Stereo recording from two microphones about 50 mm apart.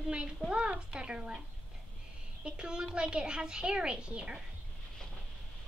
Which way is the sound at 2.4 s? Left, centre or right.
Centre.